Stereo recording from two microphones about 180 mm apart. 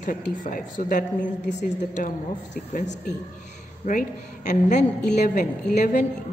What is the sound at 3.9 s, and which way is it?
A woman's voice, 45° left (ahead or behind).